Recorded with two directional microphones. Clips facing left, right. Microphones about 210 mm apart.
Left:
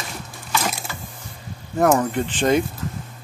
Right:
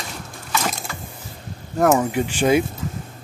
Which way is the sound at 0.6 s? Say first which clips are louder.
Right 1 dB; 5° left (ahead or behind).